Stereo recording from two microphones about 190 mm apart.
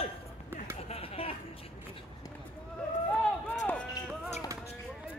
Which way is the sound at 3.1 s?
5° left (ahead or behind).